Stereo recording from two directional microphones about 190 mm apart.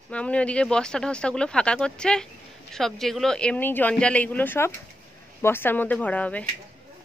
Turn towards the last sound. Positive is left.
turn(degrees=10)  # may be behind; listen again after turning